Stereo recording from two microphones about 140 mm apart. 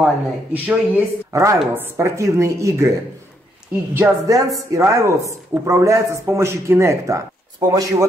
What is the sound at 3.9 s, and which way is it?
Speech, 20° right (ahead or behind).